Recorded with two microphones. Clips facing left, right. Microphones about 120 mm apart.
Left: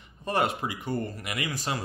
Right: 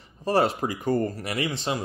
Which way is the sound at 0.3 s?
35° right (ahead or behind).